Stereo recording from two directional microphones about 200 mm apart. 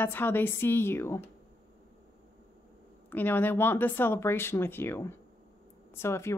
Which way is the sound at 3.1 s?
10° left (ahead or behind).